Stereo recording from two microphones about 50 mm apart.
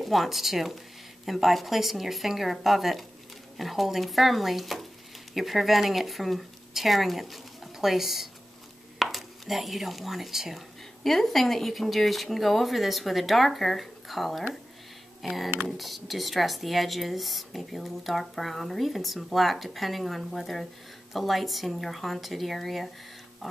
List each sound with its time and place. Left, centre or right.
0.0 s speech: centre